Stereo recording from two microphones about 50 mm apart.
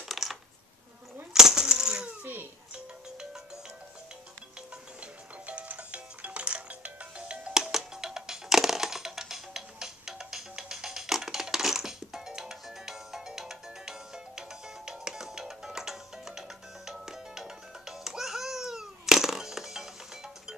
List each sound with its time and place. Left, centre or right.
0.1 s coin: centre
2.2 s music: right
5.0 s music: right
7.5 s music: centre